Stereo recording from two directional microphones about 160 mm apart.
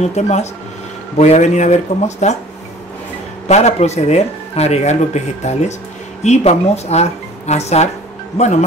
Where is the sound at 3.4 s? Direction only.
45° left (ahead or behind).